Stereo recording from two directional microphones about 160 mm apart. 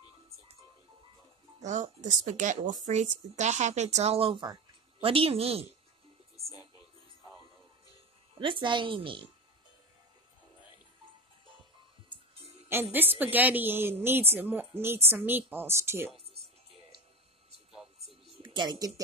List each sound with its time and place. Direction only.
1.6 s a woman's voice: 50° right (ahead or behind)
6.4 s music: 20° left (ahead or behind)
8.4 s a woman's voice: 30° right (ahead or behind)
12.9 s a woman's voice: 10° right (ahead or behind)
17.7 s a sound: centre (ahead or behind)
18.4 s a sound: 30° right (ahead or behind)